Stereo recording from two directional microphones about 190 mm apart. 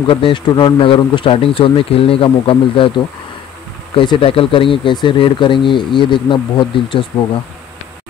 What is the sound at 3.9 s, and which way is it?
Speech, 25° left (ahead or behind).